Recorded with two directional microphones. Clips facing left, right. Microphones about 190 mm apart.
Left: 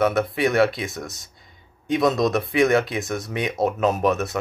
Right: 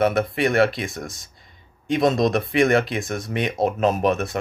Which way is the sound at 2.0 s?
25° right (ahead or behind).